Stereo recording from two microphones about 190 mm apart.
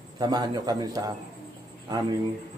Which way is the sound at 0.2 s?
20° right (ahead or behind).